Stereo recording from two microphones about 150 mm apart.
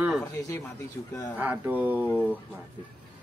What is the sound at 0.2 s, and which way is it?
Speech, 15° left (ahead or behind).